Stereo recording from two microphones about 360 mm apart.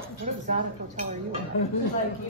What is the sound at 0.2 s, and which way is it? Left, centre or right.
Dishes, right.